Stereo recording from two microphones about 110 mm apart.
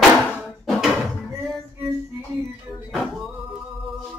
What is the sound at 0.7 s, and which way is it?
Music, centre (ahead or behind).